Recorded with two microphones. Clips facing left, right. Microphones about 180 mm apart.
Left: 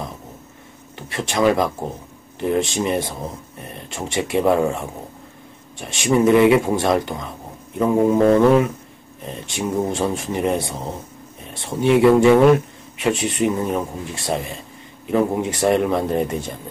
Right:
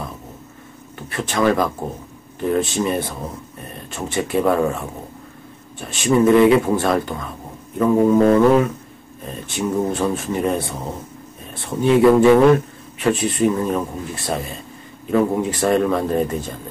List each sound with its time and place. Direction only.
0.9 s speech: 15° left (ahead or behind)
2.7 s speech: 15° left (ahead or behind)